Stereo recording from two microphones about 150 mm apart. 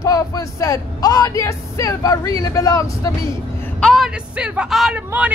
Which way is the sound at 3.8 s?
Centre (ahead or behind).